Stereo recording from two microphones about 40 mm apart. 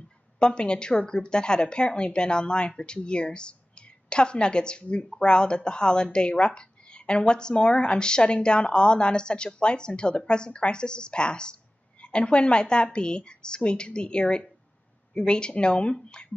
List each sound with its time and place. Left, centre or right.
0.4 s speech: left